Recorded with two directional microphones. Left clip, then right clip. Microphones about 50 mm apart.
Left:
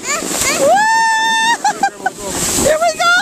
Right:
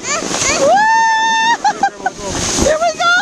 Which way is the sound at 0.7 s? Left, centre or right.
Left.